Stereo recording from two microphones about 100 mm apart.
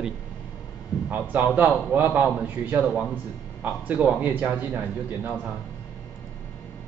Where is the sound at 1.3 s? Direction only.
20° right (ahead or behind).